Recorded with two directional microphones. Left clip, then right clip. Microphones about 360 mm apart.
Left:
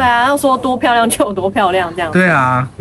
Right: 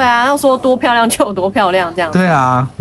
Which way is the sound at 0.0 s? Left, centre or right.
Centre.